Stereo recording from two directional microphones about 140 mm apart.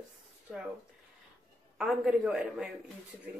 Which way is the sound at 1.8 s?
5° right (ahead or behind).